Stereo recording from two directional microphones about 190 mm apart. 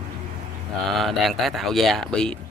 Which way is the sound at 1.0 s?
Centre (ahead or behind).